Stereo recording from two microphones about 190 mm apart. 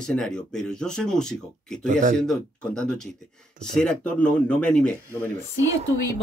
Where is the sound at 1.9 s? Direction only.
40° right (ahead or behind).